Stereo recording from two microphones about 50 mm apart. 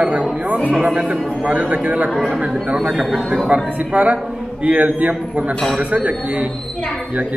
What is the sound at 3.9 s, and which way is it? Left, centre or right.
A man's voice, right.